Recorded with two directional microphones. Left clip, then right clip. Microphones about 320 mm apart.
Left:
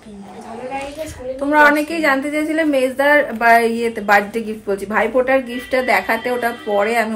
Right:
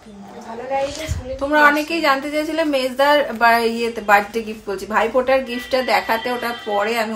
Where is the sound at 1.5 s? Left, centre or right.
Centre.